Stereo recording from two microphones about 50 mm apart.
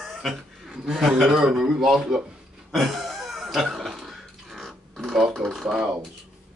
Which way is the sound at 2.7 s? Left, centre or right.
Centre.